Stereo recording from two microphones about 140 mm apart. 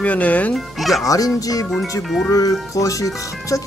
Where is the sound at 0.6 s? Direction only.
Centre (ahead or behind).